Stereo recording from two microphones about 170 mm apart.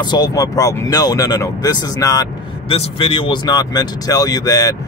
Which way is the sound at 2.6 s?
35° left (ahead or behind).